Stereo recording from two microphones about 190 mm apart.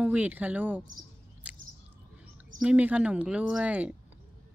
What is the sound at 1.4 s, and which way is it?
Squish, 5° right (ahead or behind).